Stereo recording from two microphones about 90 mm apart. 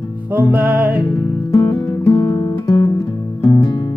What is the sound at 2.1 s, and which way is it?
Guitar, 35° left (ahead or behind).